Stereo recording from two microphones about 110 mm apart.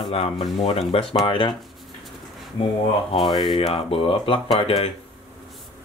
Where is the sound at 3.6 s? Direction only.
60° left (ahead or behind).